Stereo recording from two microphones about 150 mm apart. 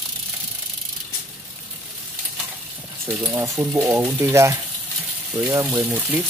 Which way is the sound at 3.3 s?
25° right (ahead or behind).